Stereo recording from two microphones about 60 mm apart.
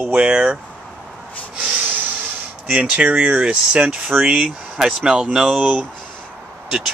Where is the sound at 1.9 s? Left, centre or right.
Right; by 5.4 s centre.